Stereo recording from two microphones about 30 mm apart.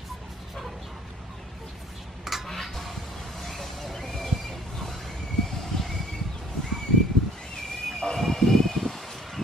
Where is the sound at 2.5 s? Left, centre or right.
Centre.